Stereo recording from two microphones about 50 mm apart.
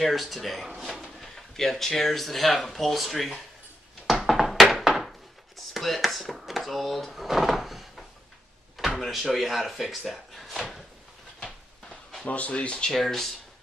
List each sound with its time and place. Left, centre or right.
0.0 s speech: centre
4.1 s a sound: centre
5.7 s drawer open or close: centre
8.7 s speech: centre
11.9 s a sound: centre
12.3 s speech: left
12.5 s speech: centre
12.9 s speech: centre